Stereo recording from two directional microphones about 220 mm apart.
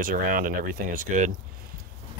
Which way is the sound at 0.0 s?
40° right (ahead or behind).